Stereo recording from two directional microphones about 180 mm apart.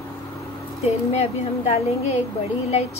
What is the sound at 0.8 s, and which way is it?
A woman's voice, 35° left (ahead or behind).